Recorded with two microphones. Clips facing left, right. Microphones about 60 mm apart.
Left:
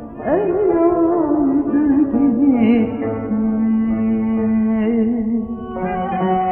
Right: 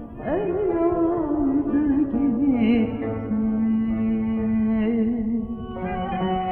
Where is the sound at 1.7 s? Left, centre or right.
Left.